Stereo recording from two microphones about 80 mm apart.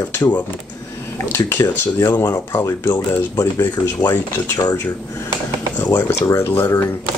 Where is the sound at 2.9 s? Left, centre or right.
Left.